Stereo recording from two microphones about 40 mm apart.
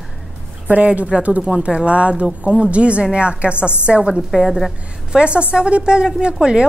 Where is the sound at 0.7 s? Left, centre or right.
Right.